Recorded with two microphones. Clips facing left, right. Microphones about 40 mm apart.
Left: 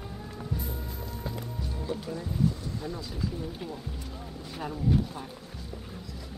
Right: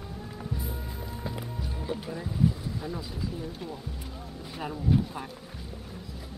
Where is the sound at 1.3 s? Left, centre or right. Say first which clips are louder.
Right 1 dB; centre.